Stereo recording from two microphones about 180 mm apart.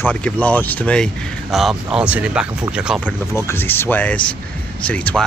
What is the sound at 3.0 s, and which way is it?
Speech, 15° left (ahead or behind).